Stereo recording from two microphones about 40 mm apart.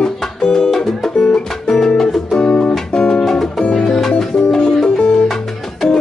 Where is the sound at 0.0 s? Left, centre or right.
Centre.